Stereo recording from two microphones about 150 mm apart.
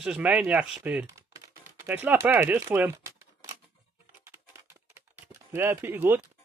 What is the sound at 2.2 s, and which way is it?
Speech, 15° right (ahead or behind).